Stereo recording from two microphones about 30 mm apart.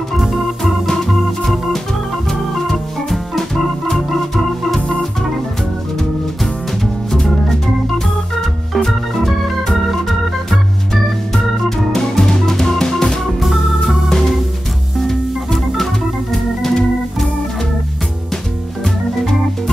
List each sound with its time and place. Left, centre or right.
0.8 s organ: centre
2.7 s organ: centre
8.4 s organ: centre
11.9 s music: centre
13.8 s organ: centre